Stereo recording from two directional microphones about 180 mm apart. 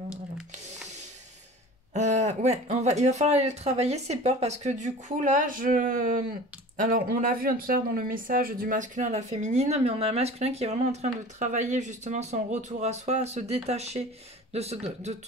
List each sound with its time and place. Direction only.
2.0 s speech: 40° right (ahead or behind)